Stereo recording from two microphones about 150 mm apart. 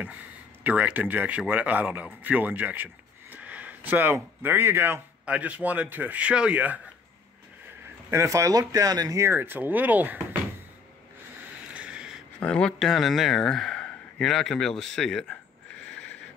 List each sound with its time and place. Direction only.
0.7 s speech: 10° right (ahead or behind)
8.1 s speech: 20° right (ahead or behind)
11.7 s a sound: 5° right (ahead or behind)
12.4 s speech: 5° left (ahead or behind)